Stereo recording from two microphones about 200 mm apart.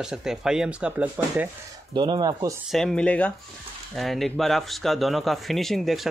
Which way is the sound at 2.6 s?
Centre (ahead or behind).